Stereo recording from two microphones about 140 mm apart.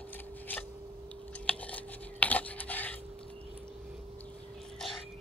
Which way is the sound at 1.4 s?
10° left (ahead or behind).